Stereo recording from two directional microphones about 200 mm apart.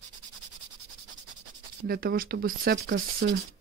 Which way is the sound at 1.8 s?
50° right (ahead or behind).